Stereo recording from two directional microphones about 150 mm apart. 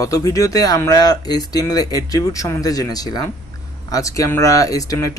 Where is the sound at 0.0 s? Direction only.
25° left (ahead or behind).